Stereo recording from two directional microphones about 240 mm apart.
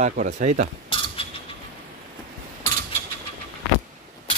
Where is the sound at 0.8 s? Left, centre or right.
Left.